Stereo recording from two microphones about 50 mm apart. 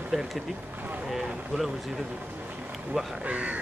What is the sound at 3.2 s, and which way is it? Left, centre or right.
Speech, right.